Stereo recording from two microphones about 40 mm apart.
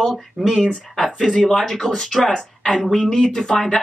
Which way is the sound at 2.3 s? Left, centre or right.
Left.